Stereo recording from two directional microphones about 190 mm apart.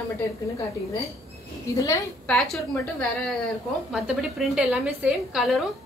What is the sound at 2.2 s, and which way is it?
A woman's voice, centre (ahead or behind).